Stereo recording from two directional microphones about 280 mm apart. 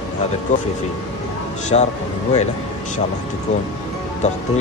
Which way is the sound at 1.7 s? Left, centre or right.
Left.